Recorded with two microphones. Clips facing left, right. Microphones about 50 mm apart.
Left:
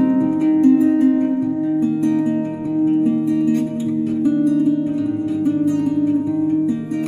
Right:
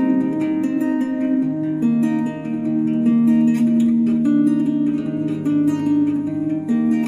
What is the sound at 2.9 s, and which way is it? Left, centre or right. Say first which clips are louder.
Music: right 1 dB; right.